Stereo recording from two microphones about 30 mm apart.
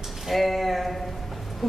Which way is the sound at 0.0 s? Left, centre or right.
Centre.